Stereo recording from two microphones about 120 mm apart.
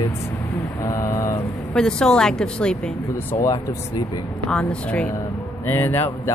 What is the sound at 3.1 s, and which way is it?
Speech, 30° left (ahead or behind).